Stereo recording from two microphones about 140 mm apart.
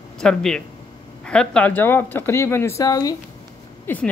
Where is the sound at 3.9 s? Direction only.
15° left (ahead or behind).